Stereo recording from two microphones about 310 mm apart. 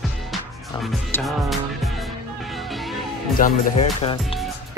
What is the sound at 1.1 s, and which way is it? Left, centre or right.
Speech, centre.